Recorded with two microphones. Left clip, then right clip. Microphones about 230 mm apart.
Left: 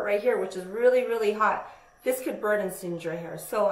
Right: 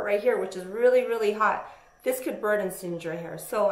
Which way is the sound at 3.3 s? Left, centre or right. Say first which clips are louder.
Right 1 dB; right.